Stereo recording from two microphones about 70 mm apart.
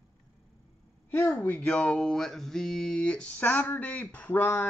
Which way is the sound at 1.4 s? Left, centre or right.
Left.